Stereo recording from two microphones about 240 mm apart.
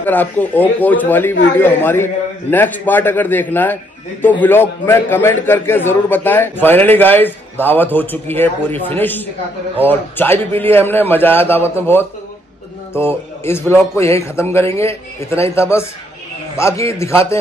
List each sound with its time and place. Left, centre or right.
0.0 s a man's voice: centre